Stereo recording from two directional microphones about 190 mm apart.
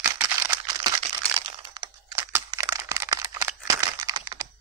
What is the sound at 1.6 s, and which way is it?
Computer keyboard, 20° right (ahead or behind).